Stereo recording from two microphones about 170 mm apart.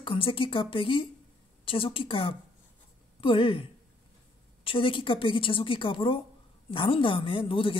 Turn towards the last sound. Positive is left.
turn(degrees=30)  # may be behind; listen again after turning